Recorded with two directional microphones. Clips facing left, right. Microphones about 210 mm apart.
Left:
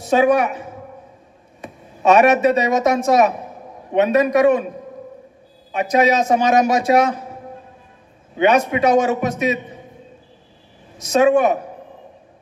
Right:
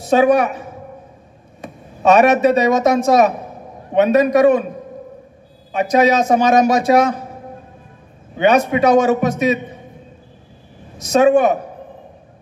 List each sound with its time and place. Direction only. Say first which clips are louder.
0.1 s a man's voice: right 2 dB; 35° right (ahead or behind)
1.6 s a man's voice: right 2 dB; 35° right (ahead or behind)
5.7 s a man's voice: right 2 dB; 35° right (ahead or behind)
8.4 s a man's voice: right 2 dB; 35° right (ahead or behind)
11.1 s a man's voice: right 2 dB; 35° right (ahead or behind)